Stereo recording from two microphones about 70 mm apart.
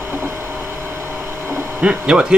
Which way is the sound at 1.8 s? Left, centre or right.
Centre.